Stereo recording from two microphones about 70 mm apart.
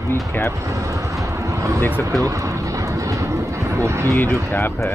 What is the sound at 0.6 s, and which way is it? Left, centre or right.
Vehicle, right.